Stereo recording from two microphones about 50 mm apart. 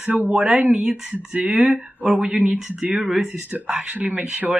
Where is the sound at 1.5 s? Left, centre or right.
Centre.